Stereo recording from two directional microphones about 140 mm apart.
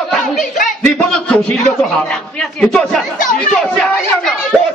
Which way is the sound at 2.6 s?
5° left (ahead or behind).